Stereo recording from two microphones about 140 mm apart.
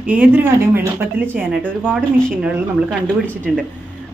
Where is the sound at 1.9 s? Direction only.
Centre (ahead or behind).